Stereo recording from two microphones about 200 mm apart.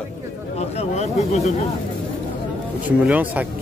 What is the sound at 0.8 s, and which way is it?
Speech, 35° left (ahead or behind).